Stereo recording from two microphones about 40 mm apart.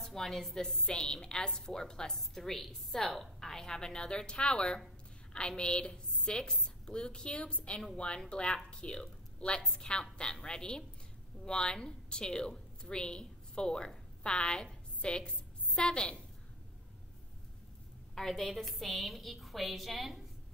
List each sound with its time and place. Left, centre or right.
0.0 s a woman's voice: centre
0.8 s a woman's voice: left
2.1 s a woman's voice: centre; by 16.2 s left
18.1 s a woman's voice: centre